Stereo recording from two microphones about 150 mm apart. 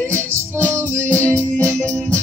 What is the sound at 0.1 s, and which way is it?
Music, 20° right (ahead or behind).